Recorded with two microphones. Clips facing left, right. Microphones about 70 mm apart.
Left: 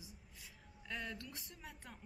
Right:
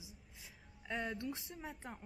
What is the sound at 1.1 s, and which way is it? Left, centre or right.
Speech, centre.